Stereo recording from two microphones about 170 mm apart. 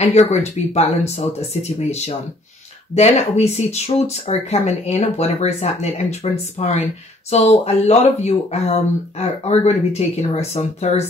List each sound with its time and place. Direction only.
0.0 s speech: 40° left (ahead or behind)